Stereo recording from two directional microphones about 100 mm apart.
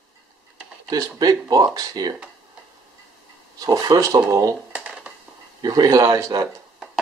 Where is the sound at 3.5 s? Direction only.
40° right (ahead or behind).